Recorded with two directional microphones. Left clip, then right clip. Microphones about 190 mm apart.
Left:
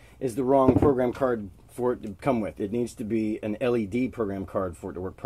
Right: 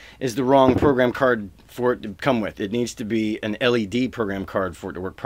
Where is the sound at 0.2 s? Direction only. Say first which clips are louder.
Right 5 dB; 20° right (ahead or behind).